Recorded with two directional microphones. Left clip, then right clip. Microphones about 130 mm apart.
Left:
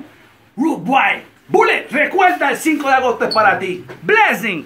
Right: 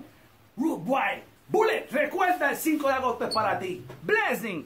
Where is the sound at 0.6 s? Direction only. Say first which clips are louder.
Left 12 dB; 15° right (ahead or behind).